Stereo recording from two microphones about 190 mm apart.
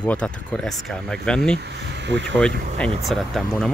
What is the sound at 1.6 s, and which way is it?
Speech, 65° right (ahead or behind).